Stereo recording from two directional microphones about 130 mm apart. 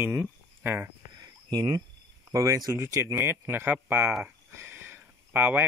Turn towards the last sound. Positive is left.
turn(degrees=-15)  # may be behind; listen again after turning